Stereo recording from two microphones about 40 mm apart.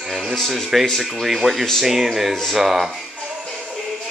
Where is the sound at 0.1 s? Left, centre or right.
Centre.